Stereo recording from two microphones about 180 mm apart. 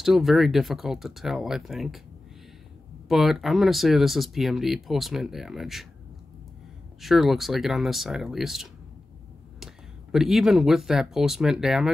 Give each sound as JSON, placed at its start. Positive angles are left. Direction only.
{"t": 0.0, "sound": "speech", "side_deg": 0}
{"t": 3.1, "sound": "speech", "side_deg": 0}
{"t": 7.0, "sound": "speech", "side_deg": 0}
{"t": 10.1, "sound": "speech", "side_deg": 0}